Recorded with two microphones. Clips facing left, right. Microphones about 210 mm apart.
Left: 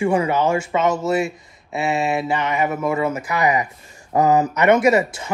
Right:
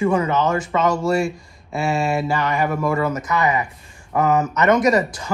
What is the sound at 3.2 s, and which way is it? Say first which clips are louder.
Mantra: left 1 dB; 15° left (ahead or behind).